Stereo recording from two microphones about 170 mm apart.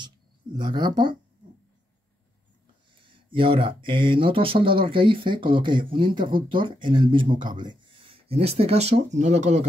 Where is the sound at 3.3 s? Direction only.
30° right (ahead or behind).